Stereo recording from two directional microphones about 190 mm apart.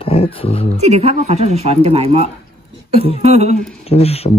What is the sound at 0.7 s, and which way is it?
Speech, 35° right (ahead or behind).